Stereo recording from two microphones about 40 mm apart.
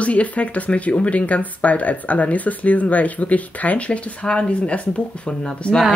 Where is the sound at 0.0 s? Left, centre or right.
Left.